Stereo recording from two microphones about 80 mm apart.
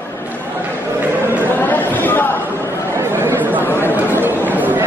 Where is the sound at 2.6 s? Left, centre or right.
Right.